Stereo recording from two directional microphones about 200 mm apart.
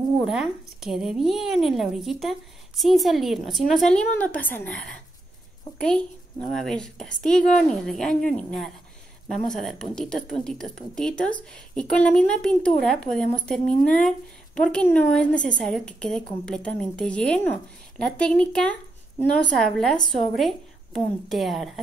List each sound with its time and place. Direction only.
0.3 s a woman's voice: centre (ahead or behind)
5.8 s a woman's voice: 5° left (ahead or behind)